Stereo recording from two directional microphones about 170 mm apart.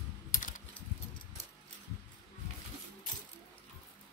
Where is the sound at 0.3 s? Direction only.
50° left (ahead or behind).